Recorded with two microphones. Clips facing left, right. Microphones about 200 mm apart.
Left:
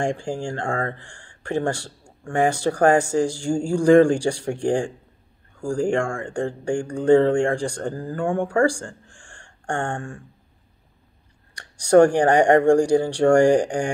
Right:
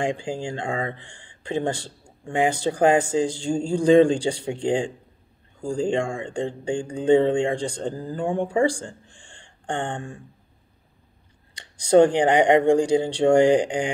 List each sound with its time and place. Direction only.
0.0 s speech: 20° right (ahead or behind)
8.8 s a sound: 20° right (ahead or behind)
12.0 s speech: 20° right (ahead or behind)